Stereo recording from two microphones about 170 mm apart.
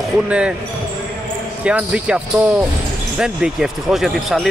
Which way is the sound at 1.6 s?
5° right (ahead or behind).